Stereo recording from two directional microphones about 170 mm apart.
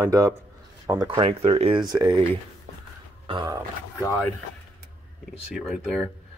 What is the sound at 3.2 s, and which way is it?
Speech, 25° right (ahead or behind).